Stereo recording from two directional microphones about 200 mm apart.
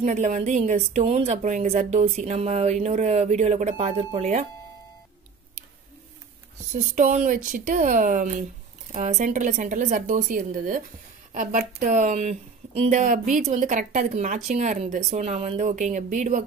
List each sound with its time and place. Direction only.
0.0 s a woman's voice: 35° right (ahead or behind)
6.7 s a woman's voice: 35° right (ahead or behind)